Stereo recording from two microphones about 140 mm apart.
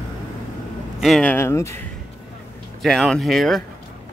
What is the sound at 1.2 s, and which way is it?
Speech, 15° left (ahead or behind).